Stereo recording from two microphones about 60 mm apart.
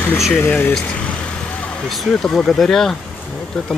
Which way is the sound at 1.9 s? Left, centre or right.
Centre.